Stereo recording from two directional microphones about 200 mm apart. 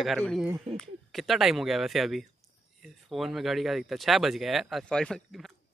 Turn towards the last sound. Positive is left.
turn(degrees=5)  # may be behind; listen again after turning